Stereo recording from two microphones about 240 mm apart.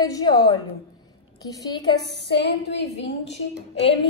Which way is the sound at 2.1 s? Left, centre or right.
Left.